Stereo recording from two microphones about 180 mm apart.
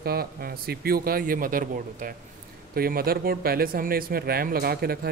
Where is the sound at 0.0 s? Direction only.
60° right (ahead or behind).